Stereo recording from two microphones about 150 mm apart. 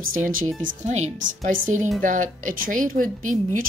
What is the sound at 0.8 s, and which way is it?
Speech, 50° right (ahead or behind).